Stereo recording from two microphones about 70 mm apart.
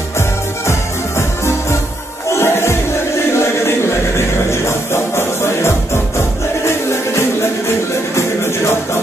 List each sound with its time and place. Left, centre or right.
2.2 s music: left
4.5 s music: left